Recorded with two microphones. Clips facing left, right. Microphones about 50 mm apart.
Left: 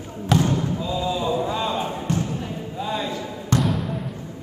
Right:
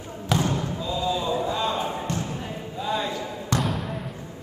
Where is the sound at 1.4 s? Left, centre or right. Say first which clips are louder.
Left 1 dB; left.